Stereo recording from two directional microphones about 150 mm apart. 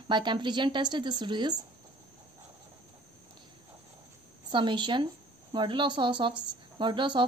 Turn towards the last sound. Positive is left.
turn(degrees=-30)  # may be behind; listen again after turning